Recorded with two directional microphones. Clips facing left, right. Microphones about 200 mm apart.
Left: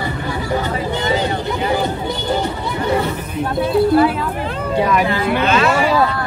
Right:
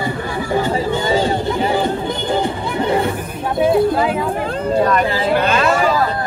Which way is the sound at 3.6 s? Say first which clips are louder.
Left 1 dB; 20° right (ahead or behind).